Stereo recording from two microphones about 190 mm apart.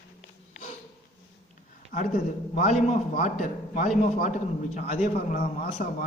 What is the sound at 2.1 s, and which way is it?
A man's voice, 40° left (ahead or behind).